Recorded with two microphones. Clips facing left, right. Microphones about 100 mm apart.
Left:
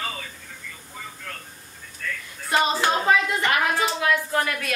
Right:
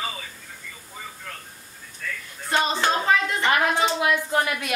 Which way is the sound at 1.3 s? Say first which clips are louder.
Left 1 dB; 5° right (ahead or behind).